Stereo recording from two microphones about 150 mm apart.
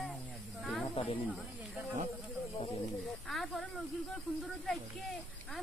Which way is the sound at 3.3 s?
Centre (ahead or behind).